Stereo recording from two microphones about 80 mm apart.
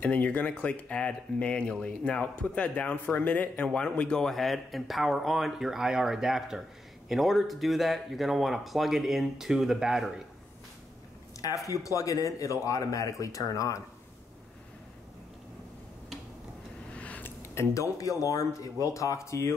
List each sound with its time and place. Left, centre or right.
0.0 s speech: centre
11.4 s speech: left
16.9 s a sound: centre
17.4 s speech: left